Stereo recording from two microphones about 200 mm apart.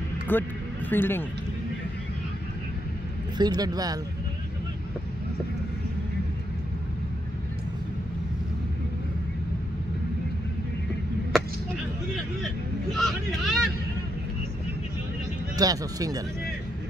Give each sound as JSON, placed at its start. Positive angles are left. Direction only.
{"t": 0.3, "sound": "speech", "side_deg": 10}
{"t": 3.3, "sound": "speech", "side_deg": -20}
{"t": 12.9, "sound": "vehicle", "side_deg": 0}
{"t": 15.5, "sound": "speech", "side_deg": -20}